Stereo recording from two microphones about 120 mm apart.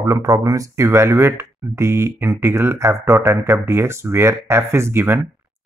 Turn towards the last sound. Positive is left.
turn(degrees=-20)  # may be behind; listen again after turning